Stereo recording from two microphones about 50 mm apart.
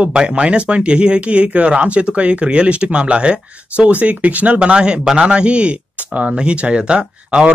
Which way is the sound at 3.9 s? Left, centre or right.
Right.